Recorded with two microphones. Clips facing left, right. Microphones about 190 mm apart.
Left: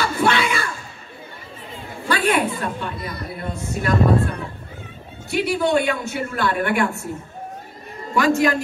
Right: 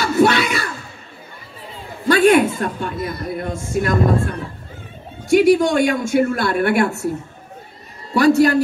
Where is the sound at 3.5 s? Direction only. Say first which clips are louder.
Right 1 dB; 45° right (ahead or behind).